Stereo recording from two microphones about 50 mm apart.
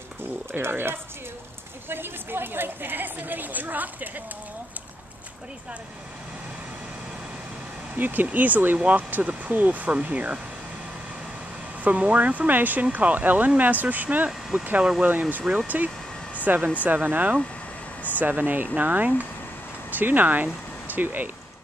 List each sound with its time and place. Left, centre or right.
0.5 s a woman's voice: right
7.9 s a woman's voice: right
11.8 s a woman's voice: right
14.8 s speech: right
15.0 s a woman's voice: right